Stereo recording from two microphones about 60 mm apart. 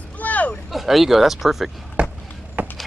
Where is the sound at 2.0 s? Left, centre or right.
Right.